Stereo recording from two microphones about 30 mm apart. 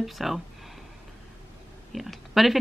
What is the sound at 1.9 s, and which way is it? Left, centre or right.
Speech, centre.